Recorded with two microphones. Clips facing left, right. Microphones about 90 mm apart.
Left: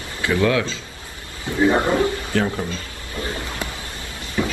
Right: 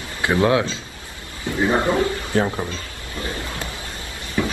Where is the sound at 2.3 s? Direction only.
20° right (ahead or behind).